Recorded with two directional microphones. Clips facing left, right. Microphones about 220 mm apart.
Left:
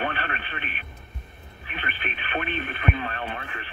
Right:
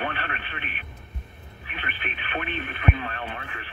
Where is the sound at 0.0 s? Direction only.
40° left (ahead or behind).